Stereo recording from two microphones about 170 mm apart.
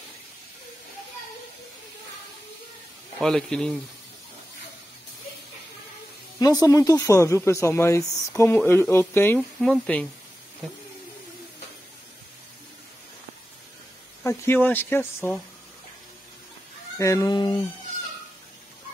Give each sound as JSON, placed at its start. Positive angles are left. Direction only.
{"t": 3.2, "sound": "speech", "side_deg": 5}
{"t": 6.4, "sound": "speech", "side_deg": 20}
{"t": 14.2, "sound": "speech", "side_deg": 15}
{"t": 17.0, "sound": "speech", "side_deg": 20}